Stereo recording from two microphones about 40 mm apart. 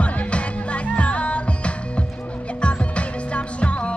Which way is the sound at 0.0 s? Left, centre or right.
Left.